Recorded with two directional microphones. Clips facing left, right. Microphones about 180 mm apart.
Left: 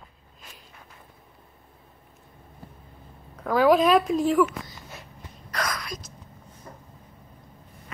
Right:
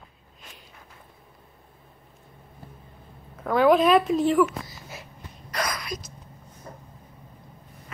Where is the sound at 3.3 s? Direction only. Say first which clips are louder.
Even; centre (ahead or behind).